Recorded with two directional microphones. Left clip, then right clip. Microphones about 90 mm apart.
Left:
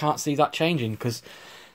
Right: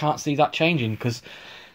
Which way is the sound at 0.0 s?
25° left (ahead or behind).